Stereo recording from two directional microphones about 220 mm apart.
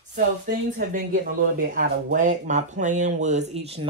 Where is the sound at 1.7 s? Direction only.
35° right (ahead or behind).